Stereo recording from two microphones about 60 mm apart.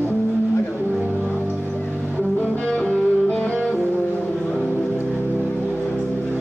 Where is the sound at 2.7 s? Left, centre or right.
Left.